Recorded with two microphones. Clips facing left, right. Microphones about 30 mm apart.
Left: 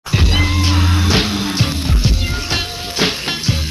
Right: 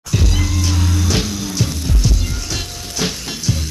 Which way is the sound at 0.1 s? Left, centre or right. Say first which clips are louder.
Left 4 dB; left.